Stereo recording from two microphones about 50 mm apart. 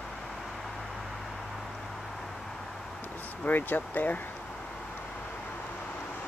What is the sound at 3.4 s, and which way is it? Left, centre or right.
Speech, left.